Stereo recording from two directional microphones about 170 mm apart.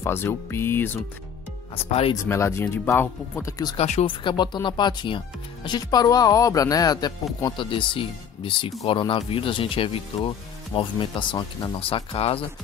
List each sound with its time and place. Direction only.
0.0 s speech: 15° left (ahead or behind)
1.9 s speech: 35° left (ahead or behind)
2.2 s speech: 15° left (ahead or behind)
3.7 s speech: 40° left (ahead or behind)